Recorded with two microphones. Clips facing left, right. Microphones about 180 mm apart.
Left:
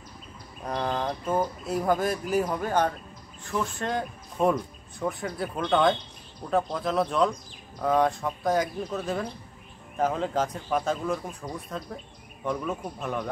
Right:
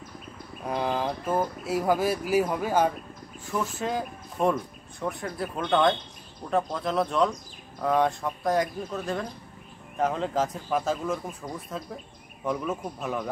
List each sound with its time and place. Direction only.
0.7 s speech: 5° right (ahead or behind)